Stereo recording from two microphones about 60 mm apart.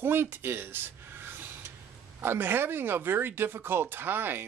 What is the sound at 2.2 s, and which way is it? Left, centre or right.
Speech, right.